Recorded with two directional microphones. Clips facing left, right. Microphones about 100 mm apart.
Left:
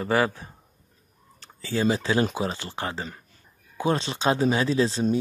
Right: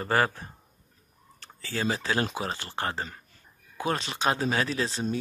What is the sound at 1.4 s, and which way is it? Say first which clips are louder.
Speech: left 6 dB; 20° left (ahead or behind).